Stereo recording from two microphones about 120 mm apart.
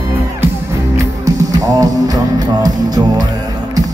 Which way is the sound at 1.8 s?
30° right (ahead or behind).